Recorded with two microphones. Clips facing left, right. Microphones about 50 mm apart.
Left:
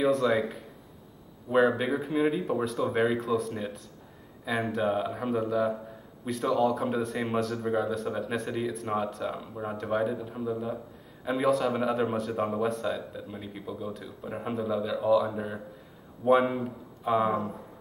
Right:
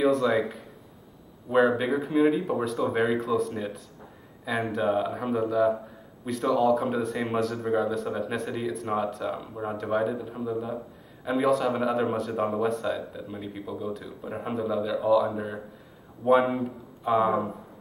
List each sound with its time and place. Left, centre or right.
0.0 s speech: centre